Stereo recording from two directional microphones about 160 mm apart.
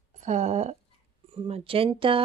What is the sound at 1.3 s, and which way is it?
Speech, 35° right (ahead or behind).